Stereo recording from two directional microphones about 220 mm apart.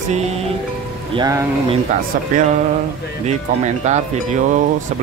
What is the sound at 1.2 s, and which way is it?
Speech, 15° right (ahead or behind).